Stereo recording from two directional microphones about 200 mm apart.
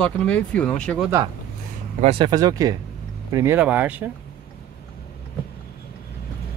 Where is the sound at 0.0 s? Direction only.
5° left (ahead or behind).